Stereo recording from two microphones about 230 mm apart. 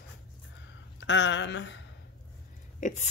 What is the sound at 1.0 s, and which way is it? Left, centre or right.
Speech, left.